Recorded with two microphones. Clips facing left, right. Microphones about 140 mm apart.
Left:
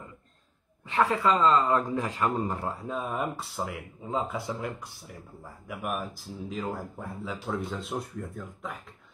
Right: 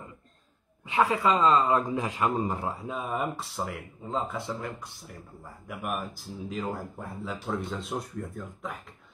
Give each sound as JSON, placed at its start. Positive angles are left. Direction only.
{"t": 0.8, "sound": "a man's voice", "side_deg": -10}